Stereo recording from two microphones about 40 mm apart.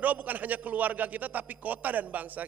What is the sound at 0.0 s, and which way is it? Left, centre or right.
A man's voice, right.